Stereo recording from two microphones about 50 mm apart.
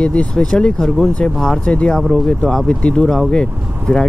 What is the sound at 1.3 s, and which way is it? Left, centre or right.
Speech, centre.